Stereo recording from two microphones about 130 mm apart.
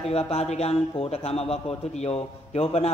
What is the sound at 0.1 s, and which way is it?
Speech, 50° left (ahead or behind).